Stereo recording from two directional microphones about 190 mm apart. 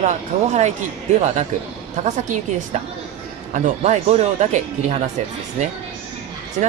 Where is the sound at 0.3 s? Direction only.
40° right (ahead or behind).